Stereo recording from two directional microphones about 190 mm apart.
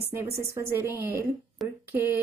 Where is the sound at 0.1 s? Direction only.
10° right (ahead or behind).